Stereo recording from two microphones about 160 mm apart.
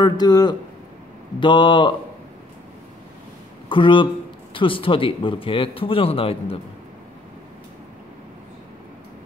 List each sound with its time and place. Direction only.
0.0 s a man's voice: 25° left (ahead or behind)
3.6 s speech: 30° left (ahead or behind)